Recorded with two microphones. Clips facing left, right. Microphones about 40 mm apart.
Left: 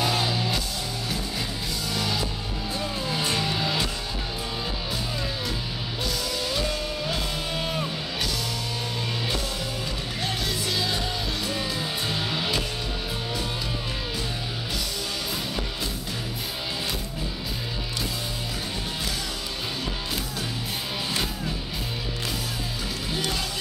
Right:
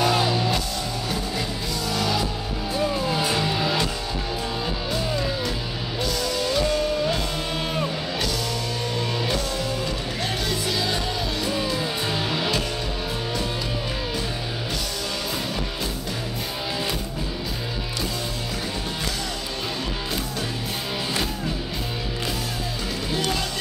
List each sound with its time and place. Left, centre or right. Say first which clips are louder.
0.0 s music: right 4 dB; centre
1.9 s music: right 4 dB; centre
6.3 s music: right 8 dB; centre
10.7 s music: right 2 dB; centre